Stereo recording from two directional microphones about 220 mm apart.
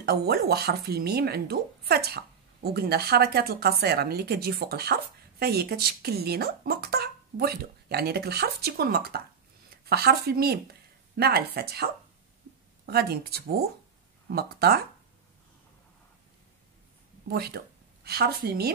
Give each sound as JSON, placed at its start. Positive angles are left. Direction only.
{"t": 0.0, "sound": "a woman's voice", "side_deg": -45}
{"t": 17.3, "sound": "speech", "side_deg": -45}